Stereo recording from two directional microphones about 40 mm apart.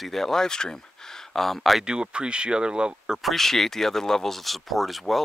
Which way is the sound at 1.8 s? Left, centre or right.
Right.